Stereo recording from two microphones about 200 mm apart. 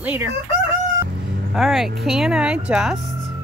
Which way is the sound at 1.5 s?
Centre (ahead or behind).